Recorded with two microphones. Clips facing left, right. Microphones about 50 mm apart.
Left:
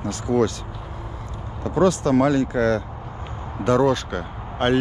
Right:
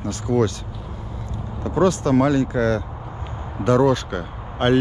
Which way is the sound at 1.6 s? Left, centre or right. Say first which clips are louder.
Even; right.